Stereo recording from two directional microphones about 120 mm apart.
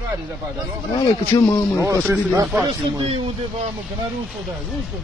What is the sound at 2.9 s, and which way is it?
Speech, 45° right (ahead or behind).